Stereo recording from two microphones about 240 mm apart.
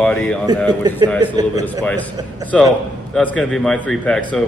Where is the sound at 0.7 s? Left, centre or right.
Centre.